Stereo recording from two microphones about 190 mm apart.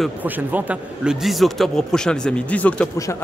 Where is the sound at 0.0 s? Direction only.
10° right (ahead or behind).